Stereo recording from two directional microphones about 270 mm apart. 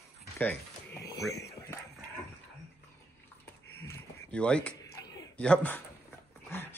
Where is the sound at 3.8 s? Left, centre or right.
Centre.